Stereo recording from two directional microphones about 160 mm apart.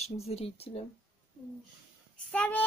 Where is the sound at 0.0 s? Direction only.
40° left (ahead or behind).